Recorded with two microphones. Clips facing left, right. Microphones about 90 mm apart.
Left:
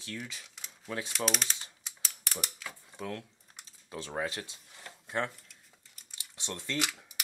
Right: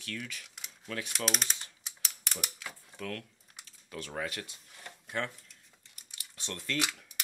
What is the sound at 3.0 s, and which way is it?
Speech, 20° left (ahead or behind).